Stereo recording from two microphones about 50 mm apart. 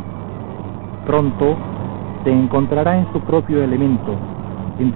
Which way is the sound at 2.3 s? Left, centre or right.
Left.